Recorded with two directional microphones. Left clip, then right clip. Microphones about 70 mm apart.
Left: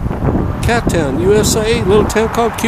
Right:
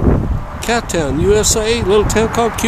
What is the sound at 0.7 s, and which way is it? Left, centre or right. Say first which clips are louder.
Speech: left 1 dB; centre.